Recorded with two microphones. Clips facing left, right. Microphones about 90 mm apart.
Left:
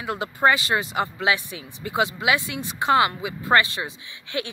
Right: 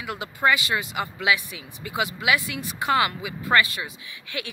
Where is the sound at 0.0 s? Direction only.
35° left (ahead or behind).